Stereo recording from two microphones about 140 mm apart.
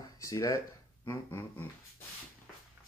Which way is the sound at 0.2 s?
25° left (ahead or behind).